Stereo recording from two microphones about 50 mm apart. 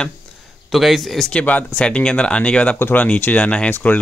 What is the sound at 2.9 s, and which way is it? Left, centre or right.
Speech, left.